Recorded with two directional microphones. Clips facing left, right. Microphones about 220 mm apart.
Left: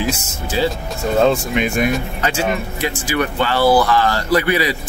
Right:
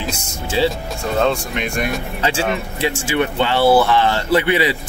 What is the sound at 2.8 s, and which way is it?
Speech, 25° right (ahead or behind).